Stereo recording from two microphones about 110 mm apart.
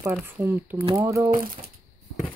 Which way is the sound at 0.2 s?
20° right (ahead or behind).